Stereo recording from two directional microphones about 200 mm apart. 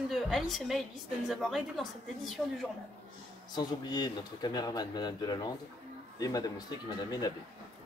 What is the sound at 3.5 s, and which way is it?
Speech, 20° left (ahead or behind).